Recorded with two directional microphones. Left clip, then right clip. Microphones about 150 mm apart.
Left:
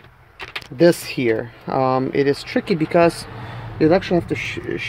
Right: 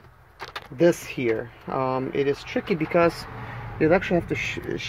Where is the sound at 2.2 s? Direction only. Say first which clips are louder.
Left 6 dB; 60° left (ahead or behind).